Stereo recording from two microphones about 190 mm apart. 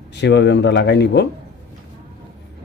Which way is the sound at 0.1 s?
65° left (ahead or behind).